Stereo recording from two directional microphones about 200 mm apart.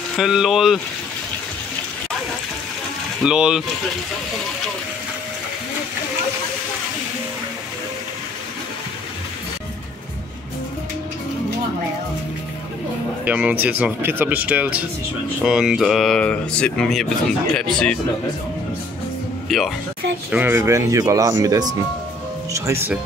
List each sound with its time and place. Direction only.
0.1 s speech: centre (ahead or behind)
3.3 s speech: 5° right (ahead or behind)
13.2 s speech: 10° right (ahead or behind)
19.5 s speech: centre (ahead or behind)
20.2 s speech: 10° right (ahead or behind)